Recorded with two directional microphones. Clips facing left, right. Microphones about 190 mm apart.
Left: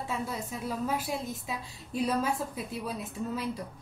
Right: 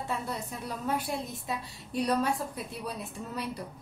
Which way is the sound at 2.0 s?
Centre (ahead or behind).